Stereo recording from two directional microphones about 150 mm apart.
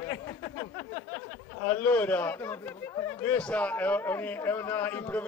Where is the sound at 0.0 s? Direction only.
20° left (ahead or behind).